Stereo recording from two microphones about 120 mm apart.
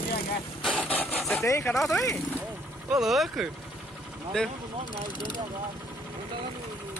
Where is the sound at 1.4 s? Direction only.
25° left (ahead or behind).